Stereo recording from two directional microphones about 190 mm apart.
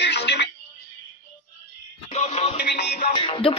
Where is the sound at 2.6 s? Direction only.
60° left (ahead or behind).